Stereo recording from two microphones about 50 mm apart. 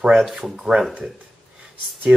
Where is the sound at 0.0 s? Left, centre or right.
Centre.